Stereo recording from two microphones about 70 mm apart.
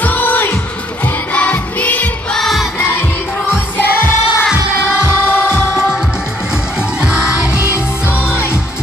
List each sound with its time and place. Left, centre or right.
0.0 s music: left
2.3 s music: centre
3.7 s music: left
7.0 s music: centre